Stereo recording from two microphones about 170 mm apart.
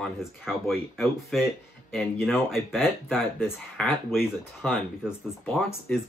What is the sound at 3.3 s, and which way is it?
Speech, 10° left (ahead or behind).